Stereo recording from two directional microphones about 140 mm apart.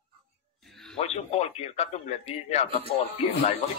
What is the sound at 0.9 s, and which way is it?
Speech, 50° left (ahead or behind).